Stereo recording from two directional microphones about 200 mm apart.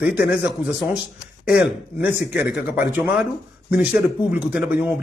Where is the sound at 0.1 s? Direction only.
50° left (ahead or behind).